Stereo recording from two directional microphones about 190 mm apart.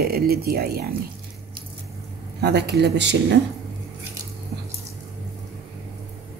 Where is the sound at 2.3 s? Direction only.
60° right (ahead or behind).